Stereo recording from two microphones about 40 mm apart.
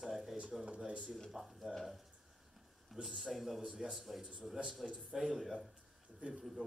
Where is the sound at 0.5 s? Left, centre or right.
Centre.